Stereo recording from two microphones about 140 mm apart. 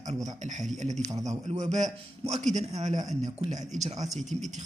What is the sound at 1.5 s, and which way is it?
Speech, 55° right (ahead or behind).